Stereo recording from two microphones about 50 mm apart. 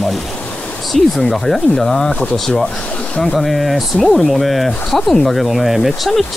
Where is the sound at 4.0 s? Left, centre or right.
Centre.